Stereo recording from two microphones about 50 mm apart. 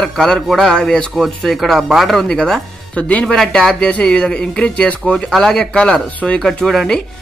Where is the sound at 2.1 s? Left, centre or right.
Centre.